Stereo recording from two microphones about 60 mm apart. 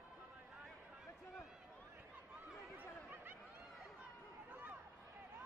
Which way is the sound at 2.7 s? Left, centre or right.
Right.